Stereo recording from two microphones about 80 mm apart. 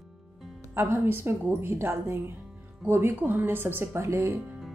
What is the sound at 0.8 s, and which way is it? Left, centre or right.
A woman's voice, right.